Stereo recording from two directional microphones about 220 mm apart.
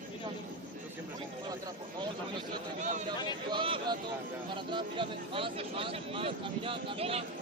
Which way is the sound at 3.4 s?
20° right (ahead or behind).